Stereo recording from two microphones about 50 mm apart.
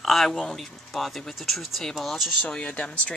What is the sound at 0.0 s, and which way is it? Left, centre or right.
Speech, centre.